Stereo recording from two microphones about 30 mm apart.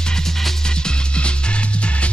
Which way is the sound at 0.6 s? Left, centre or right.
Left.